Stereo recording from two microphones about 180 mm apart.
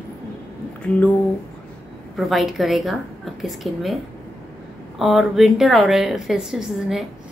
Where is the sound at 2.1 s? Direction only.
Centre (ahead or behind).